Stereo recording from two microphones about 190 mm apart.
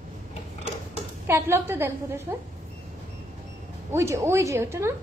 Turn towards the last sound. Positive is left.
turn(degrees=-15)  # may be behind; listen again after turning